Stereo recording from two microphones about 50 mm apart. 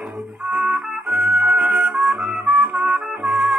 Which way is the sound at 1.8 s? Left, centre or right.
Centre.